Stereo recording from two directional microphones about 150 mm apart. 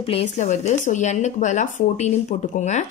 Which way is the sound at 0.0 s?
45° left (ahead or behind).